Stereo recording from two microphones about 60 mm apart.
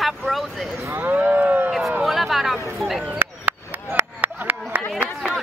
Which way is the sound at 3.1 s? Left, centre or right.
Right.